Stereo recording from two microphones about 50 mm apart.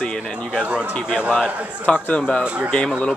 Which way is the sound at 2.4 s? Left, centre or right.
Right.